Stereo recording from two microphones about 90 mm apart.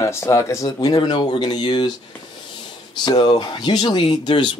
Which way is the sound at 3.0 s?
55° left (ahead or behind).